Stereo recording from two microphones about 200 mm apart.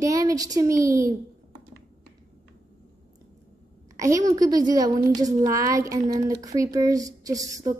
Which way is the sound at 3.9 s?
15° right (ahead or behind).